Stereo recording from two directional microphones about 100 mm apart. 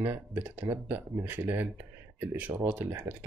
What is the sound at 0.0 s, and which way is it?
Speech, 20° right (ahead or behind).